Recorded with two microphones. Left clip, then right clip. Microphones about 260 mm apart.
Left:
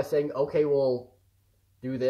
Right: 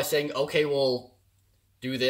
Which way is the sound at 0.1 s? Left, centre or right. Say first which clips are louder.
Even; centre.